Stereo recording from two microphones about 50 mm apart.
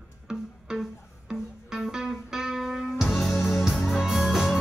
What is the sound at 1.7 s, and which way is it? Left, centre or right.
Music, centre.